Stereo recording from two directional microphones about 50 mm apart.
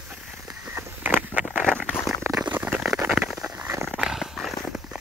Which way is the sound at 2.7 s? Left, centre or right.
Centre.